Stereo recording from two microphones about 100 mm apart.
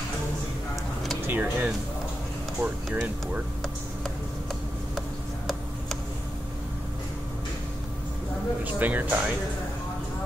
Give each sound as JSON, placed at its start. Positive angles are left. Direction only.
{"t": 1.2, "sound": "speech", "side_deg": -15}
{"t": 8.7, "sound": "speech", "side_deg": -15}